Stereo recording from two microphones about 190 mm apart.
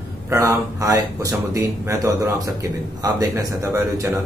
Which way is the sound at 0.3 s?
15° right (ahead or behind).